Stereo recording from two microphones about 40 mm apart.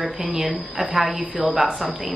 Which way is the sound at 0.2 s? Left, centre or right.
Centre.